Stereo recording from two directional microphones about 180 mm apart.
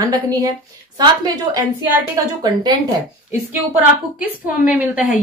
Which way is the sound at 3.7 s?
10° right (ahead or behind).